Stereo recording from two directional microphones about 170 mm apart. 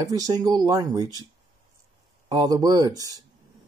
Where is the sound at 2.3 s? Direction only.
20° right (ahead or behind).